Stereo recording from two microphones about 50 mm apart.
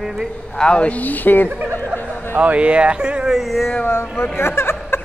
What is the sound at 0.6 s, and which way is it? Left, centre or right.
Speech, centre.